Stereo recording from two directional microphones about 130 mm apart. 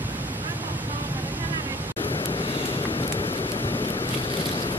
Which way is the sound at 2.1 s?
45° left (ahead or behind).